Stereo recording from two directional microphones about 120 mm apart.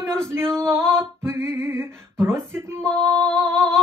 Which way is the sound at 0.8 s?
5° left (ahead or behind).